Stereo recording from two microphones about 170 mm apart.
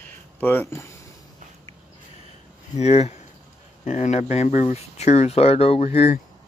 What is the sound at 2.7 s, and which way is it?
Speech, 40° left (ahead or behind).